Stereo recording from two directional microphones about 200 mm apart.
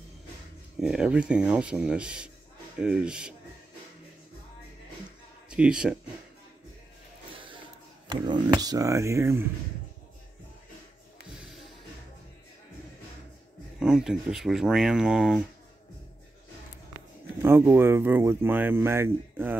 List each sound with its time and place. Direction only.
0.7 s speech: 5° right (ahead or behind)
5.5 s speech: 5° right (ahead or behind)
8.1 s speech: 20° right (ahead or behind)
13.7 s speech: centre (ahead or behind)
17.4 s speech: 10° right (ahead or behind)